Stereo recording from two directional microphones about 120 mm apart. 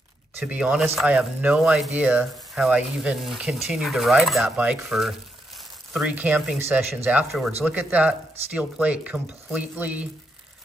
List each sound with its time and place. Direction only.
0.4 s speech: 10° right (ahead or behind)